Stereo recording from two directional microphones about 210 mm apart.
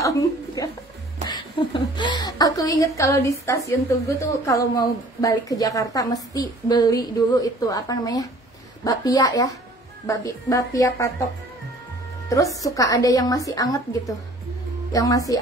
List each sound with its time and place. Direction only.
0.0 s a sound: 15° left (ahead or behind)
1.2 s a woman's voice: 20° left (ahead or behind)
12.3 s a woman's voice: 15° left (ahead or behind)